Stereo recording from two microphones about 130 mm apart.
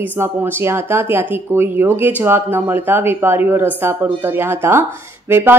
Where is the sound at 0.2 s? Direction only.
20° right (ahead or behind).